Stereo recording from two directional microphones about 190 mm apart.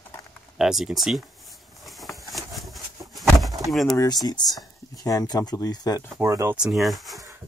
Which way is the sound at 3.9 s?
20° left (ahead or behind).